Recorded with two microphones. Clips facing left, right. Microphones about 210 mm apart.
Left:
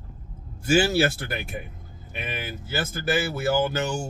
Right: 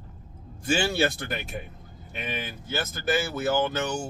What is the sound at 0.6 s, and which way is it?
Speech, 5° left (ahead or behind).